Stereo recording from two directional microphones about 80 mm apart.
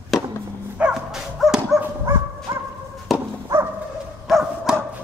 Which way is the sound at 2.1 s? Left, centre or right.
Right.